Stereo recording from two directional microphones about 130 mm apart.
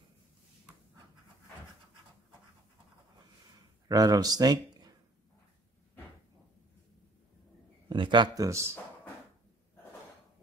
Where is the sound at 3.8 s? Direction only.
30° right (ahead or behind).